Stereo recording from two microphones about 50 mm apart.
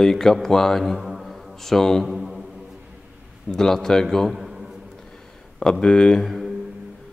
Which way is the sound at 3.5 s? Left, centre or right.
Centre.